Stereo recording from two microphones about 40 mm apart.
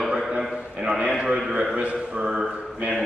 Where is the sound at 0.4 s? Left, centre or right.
Centre.